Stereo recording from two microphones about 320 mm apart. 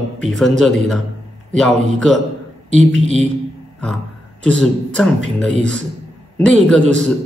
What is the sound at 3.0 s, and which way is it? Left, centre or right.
Speech, right.